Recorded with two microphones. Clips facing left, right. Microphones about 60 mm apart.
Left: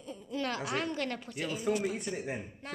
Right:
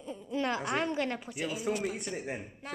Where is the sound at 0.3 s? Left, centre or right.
Right.